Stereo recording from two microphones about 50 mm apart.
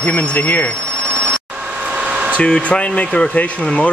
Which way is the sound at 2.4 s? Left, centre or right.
Centre.